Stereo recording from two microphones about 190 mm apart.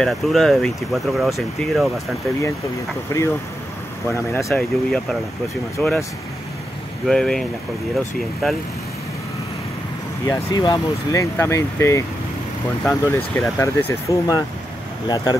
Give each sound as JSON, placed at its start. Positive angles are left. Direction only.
{"t": 0.0, "sound": "speech", "side_deg": 0}
{"t": 3.1, "sound": "speech", "side_deg": 15}
{"t": 4.5, "sound": "speech", "side_deg": 5}
{"t": 7.1, "sound": "speech", "side_deg": 5}
{"t": 10.2, "sound": "speech", "side_deg": 15}